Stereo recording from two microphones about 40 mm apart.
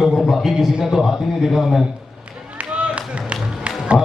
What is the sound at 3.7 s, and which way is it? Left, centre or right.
Music, right.